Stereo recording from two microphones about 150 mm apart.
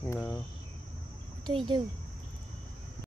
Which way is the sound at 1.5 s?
35° right (ahead or behind).